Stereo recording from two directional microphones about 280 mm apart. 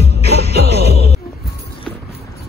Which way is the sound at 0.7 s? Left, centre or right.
Right.